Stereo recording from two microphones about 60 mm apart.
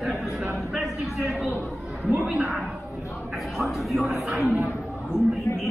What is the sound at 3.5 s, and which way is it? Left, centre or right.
A man's voice, centre.